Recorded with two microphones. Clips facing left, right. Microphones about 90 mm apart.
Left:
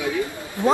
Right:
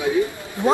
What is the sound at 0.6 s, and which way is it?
Speech, 20° right (ahead or behind).